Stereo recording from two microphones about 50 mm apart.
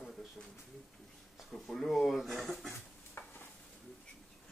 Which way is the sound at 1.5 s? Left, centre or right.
Centre.